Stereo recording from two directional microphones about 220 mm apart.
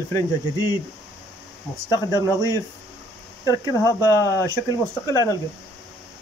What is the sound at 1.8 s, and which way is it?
Speech, 15° left (ahead or behind).